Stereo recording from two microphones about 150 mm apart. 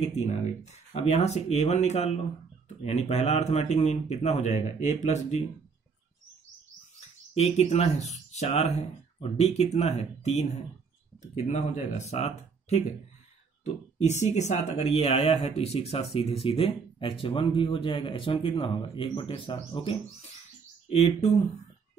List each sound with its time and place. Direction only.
0.2 s speech: 45° left (ahead or behind)
7.0 s speech: 45° left (ahead or behind)
14.0 s speech: 50° left (ahead or behind)